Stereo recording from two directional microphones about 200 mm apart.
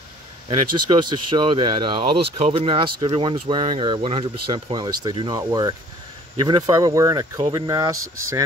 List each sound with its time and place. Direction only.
0.5 s speech: 25° right (ahead or behind)